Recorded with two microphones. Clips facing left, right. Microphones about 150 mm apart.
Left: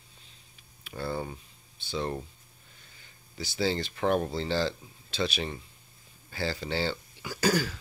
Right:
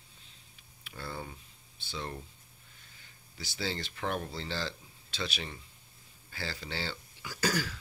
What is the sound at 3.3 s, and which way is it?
Speech, 15° left (ahead or behind).